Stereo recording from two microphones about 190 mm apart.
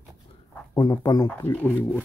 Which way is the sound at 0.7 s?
20° left (ahead or behind).